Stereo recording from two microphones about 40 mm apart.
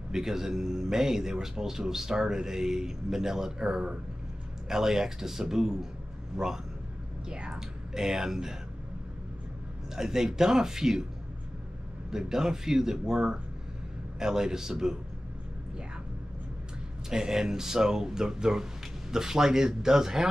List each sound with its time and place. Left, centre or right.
0.1 s a man's voice: centre
9.9 s a man's voice: centre
12.1 s a man's voice: centre
17.1 s a man's voice: centre